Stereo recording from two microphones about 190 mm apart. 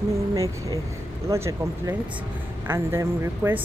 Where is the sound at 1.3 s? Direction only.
15° right (ahead or behind).